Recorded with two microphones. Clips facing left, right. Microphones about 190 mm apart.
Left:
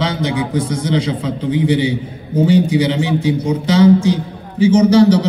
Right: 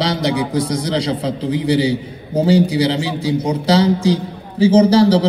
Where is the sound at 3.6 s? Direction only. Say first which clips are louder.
Left 4 dB; 35° right (ahead or behind).